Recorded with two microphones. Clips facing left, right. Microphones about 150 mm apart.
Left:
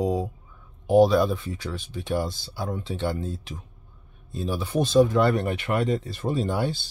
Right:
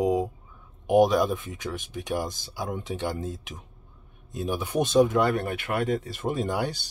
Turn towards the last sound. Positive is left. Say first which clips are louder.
# left 2 dB
turn(degrees=-15)  # may be behind; listen again after turning